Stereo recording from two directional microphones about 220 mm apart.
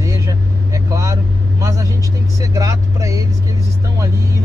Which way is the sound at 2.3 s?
15° right (ahead or behind).